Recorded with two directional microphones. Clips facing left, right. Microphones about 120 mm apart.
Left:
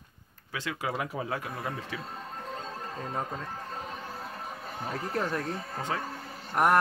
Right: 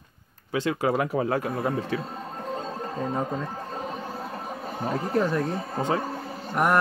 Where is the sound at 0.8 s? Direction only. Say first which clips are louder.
Right 7 dB; 50° right (ahead or behind).